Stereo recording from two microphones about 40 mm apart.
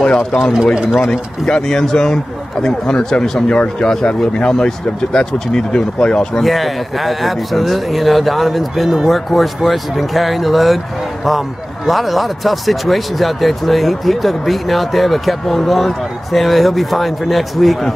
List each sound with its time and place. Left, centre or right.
0.0 s speech: left
1.0 s speech: centre
6.4 s speech: centre